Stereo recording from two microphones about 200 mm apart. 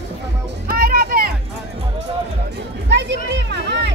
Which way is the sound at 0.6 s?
50° right (ahead or behind).